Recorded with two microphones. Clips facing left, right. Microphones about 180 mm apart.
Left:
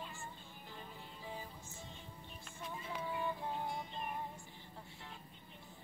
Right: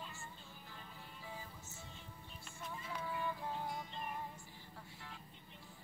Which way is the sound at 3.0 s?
25° left (ahead or behind).